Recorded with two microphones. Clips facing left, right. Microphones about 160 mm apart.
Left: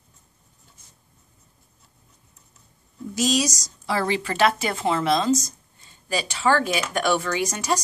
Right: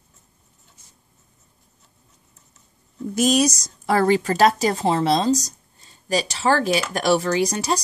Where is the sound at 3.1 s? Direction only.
55° right (ahead or behind).